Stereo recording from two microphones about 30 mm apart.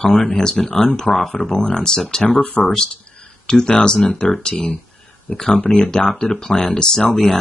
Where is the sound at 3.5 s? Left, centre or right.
Left.